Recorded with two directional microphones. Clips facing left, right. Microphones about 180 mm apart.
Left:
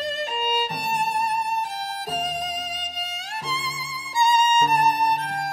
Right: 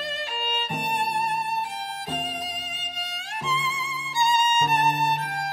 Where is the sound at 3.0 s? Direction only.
40° left (ahead or behind).